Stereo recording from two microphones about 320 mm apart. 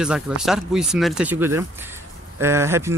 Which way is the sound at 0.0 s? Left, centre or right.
Centre.